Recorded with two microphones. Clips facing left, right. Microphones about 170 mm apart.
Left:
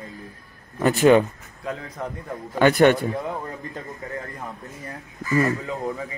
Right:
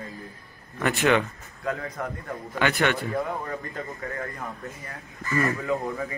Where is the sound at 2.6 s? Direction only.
45° left (ahead or behind).